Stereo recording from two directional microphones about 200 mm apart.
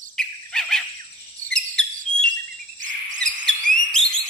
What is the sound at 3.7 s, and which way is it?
Alarm, 40° right (ahead or behind).